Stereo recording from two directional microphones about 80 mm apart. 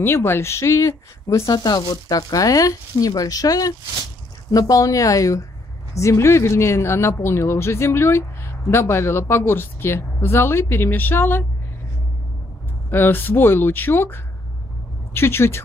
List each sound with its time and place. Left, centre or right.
0.0 s speech: left
1.5 s speech: left
12.9 s speech: left